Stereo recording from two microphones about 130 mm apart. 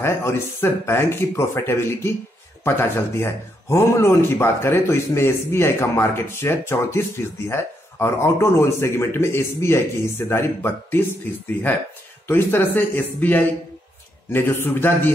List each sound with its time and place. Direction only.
0.0 s speech: 20° left (ahead or behind)